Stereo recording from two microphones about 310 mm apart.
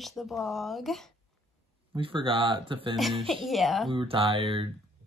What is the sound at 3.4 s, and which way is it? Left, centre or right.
Speech, centre.